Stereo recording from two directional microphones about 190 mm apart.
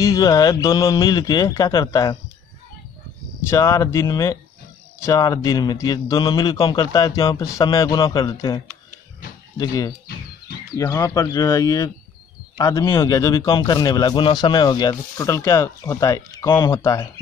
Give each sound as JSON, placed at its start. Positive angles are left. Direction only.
{"t": 0.0, "sound": "a man's voice", "side_deg": 20}
{"t": 3.4, "sound": "a man's voice", "side_deg": 15}